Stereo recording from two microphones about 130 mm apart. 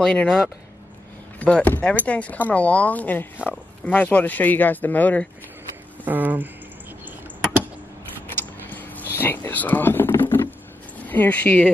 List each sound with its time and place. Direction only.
0.0 s speech: 5° left (ahead or behind)
6.0 s speech: 15° right (ahead or behind)
8.4 s a sound: 15° left (ahead or behind)
11.1 s speech: 15° left (ahead or behind)